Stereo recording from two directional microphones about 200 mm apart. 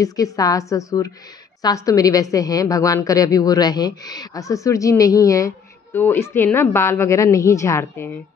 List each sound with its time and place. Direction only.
0.0 s a woman's voice: 15° left (ahead or behind)